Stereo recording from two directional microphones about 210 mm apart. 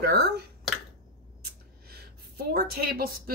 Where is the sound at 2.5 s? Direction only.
45° right (ahead or behind).